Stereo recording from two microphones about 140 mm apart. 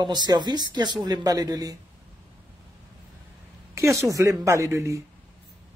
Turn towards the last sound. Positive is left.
turn(degrees=-20)  # may be behind; listen again after turning